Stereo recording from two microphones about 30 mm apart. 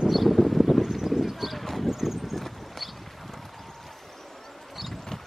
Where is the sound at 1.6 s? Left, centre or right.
Centre.